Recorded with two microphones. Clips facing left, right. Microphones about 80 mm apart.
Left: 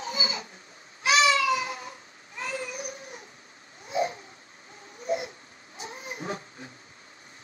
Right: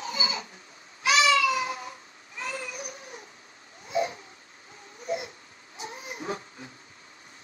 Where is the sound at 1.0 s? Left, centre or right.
Left.